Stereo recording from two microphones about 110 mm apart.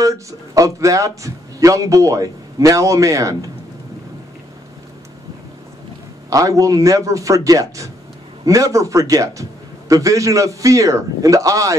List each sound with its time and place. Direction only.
0.0 s a man's voice: 30° right (ahead or behind)
6.3 s a man's voice: 30° right (ahead or behind)